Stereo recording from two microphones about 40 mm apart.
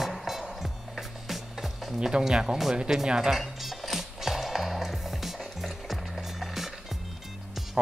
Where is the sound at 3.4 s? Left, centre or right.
Centre.